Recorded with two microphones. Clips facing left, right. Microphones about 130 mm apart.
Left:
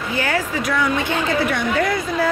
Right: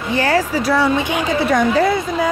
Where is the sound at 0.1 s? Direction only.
35° right (ahead or behind).